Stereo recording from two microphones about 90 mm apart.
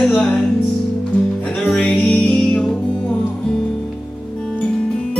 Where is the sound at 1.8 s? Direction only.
10° left (ahead or behind).